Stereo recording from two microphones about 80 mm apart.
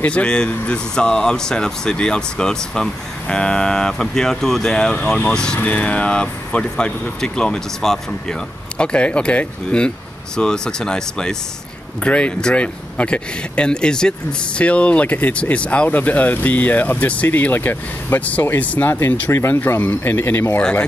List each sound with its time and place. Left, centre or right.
0.0 s speech: centre